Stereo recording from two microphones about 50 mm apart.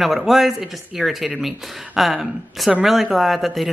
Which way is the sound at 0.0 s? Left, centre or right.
Centre.